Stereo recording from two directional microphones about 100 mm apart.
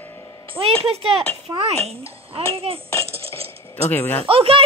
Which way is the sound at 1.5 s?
90° right.